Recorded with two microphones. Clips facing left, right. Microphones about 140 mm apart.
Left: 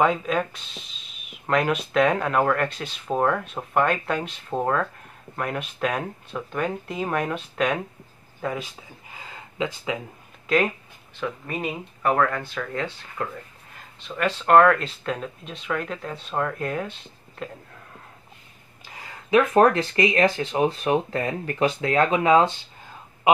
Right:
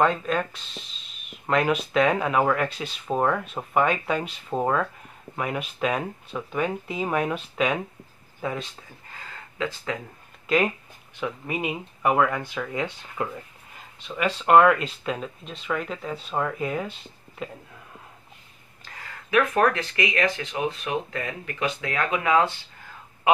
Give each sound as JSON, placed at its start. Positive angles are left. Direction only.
{"t": 0.0, "sound": "speech", "side_deg": 5}
{"t": 10.4, "sound": "speech", "side_deg": 0}
{"t": 18.9, "sound": "a sound", "side_deg": 20}
{"t": 19.5, "sound": "speech", "side_deg": 30}